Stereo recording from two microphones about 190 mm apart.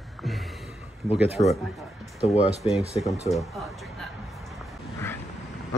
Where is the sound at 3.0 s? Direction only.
Centre (ahead or behind).